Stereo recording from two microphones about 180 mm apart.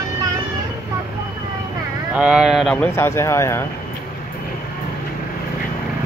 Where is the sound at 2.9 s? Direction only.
15° left (ahead or behind).